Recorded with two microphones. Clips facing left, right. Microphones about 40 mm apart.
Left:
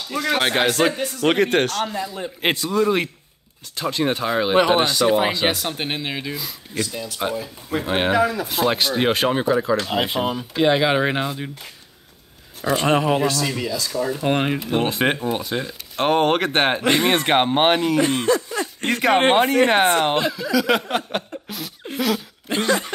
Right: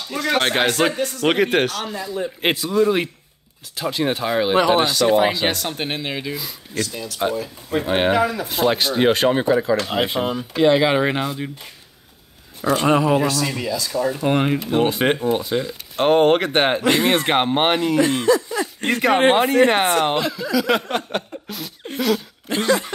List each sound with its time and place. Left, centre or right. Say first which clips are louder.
0.1 s speech: right 1 dB; centre
4.6 s speech: even; centre
4.8 s speech: right 2 dB; centre
12.6 s speech: right 2 dB; centre
12.9 s speech: right 2 dB; left
13.2 s speech: even; centre
14.2 s speech: right 1 dB; centre
18.0 s speech: right 1 dB; centre
18.9 s speech: right 1 dB; centre